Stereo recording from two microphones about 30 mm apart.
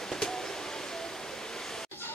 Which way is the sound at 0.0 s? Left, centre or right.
Centre.